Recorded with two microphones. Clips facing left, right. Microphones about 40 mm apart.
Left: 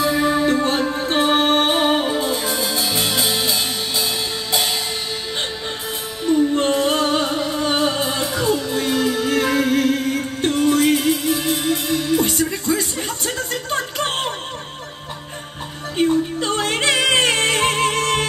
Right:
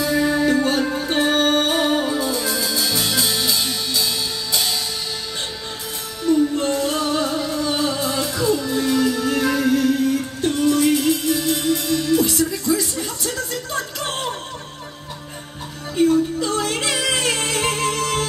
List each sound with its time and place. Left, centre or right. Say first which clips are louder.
0.0 s music: left 1 dB; left
6.5 s music: left 3 dB; left
11.0 s music: even; left
16.1 s music: right 1 dB; left